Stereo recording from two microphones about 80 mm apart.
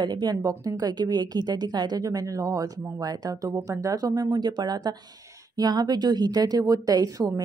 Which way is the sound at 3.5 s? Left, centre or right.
Right.